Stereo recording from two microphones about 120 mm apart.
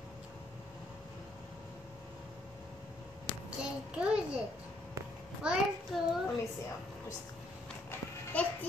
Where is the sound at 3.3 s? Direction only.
35° left (ahead or behind).